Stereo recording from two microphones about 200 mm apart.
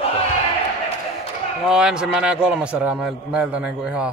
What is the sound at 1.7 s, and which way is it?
A man's voice, 5° right (ahead or behind).